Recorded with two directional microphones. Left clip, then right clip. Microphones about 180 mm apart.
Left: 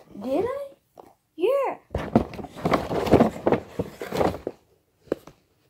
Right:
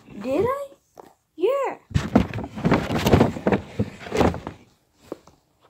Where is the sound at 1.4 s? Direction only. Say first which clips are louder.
Even; 5° right (ahead or behind).